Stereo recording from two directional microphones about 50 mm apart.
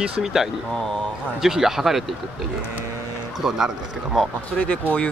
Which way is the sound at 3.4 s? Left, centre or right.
Centre.